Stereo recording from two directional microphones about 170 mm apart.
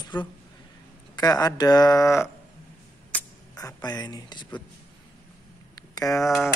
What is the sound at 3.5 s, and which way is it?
Speech, 20° left (ahead or behind).